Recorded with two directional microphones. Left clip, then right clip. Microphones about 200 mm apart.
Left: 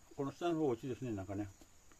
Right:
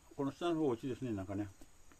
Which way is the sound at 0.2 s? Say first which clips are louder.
Right 1 dB; 5° right (ahead or behind).